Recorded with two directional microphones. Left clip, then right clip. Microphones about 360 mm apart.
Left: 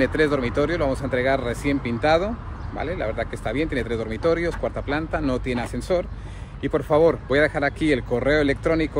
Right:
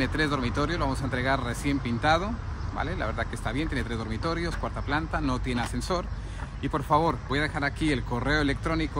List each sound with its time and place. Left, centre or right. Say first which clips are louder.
0.0 s speech: left 7 dB; centre